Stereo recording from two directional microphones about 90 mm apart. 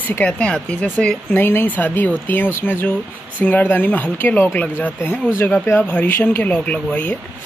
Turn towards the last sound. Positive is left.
turn(degrees=15)  # may be behind; listen again after turning